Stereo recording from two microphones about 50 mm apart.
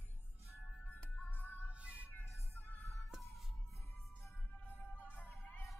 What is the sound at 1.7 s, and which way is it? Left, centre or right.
Music, right.